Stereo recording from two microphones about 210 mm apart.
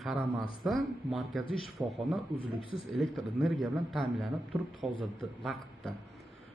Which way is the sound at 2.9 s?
Centre (ahead or behind).